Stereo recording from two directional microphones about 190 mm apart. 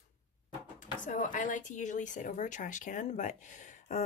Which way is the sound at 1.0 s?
40° left (ahead or behind).